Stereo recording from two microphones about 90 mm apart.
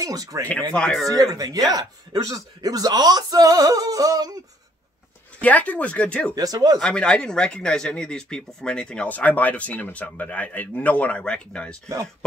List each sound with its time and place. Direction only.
0.0 s speech: 40° right (ahead or behind)
0.7 s speech: 10° left (ahead or behind)
1.0 s speech: 45° right (ahead or behind)
5.4 s speech: 15° left (ahead or behind)
6.3 s speech: 45° right (ahead or behind)
6.8 s speech: 10° left (ahead or behind)